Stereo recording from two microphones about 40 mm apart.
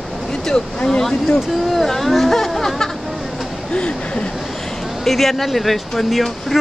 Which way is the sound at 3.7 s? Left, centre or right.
Left.